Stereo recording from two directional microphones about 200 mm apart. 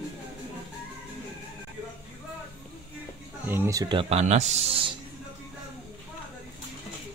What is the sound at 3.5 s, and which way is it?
Speech, 15° right (ahead or behind).